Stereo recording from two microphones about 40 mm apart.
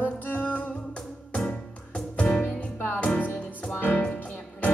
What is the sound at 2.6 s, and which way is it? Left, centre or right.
Music, left.